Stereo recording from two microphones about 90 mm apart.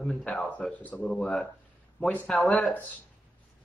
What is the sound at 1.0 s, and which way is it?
Speech, 5° left (ahead or behind).